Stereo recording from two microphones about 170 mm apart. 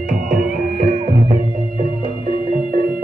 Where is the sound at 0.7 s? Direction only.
55° right (ahead or behind).